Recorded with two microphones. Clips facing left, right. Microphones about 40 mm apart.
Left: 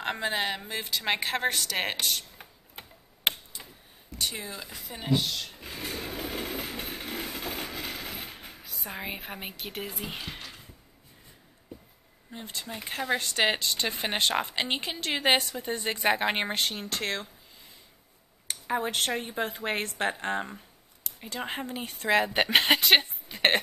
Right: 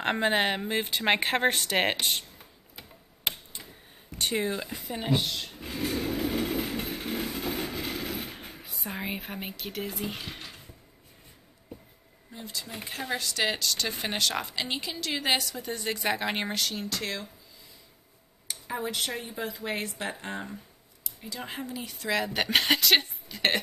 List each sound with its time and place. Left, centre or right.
0.0 s a woman's voice: right
2.8 s tick-tock: left
4.2 s speech: right
5.0 s speech: centre
5.8 s train: centre
6.9 s vehicle: centre
7.8 s a sound: centre
8.7 s speech: centre
12.6 s a woman's voice: left
16.5 s a woman's voice: left